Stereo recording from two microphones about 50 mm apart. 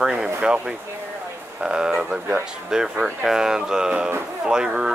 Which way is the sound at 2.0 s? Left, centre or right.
Right.